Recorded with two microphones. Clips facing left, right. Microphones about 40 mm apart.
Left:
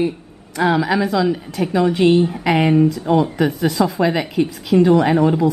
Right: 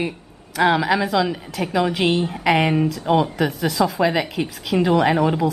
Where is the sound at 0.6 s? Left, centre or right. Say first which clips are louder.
Left 1 dB; centre.